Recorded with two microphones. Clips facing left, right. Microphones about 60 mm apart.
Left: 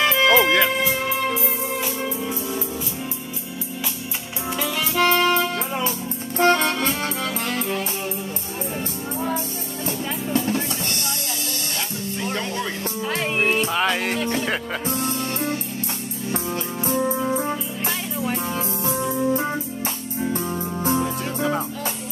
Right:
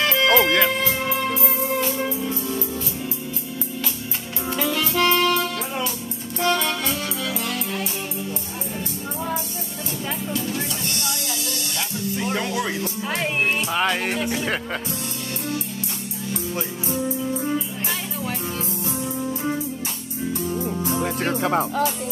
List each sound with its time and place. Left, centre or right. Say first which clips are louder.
0.0 s music: left 2 dB; left
0.3 s speech: even; centre
0.7 s music: left 1 dB; centre
4.6 s music: right 2 dB; centre
4.9 s music: left 2 dB; left
9.8 s music: left 2 dB; left
12.2 s music: right 2 dB; centre
14.9 s music: left 5 dB; left
18.9 s music: left 7 dB; left
21.0 s music: right 1 dB; right